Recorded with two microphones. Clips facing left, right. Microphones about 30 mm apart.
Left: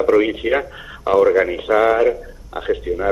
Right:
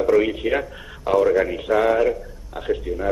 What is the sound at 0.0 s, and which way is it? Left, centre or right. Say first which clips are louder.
Speech: left 3 dB; centre.